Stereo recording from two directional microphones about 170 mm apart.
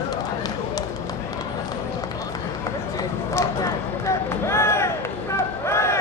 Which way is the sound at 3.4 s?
15° left (ahead or behind).